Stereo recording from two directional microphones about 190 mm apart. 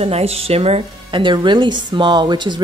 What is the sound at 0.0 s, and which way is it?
Speech, 30° right (ahead or behind).